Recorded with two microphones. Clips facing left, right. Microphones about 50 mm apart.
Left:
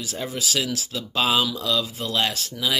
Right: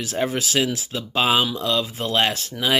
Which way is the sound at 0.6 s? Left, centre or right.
Right.